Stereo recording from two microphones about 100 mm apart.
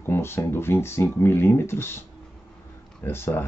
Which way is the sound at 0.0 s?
25° left (ahead or behind).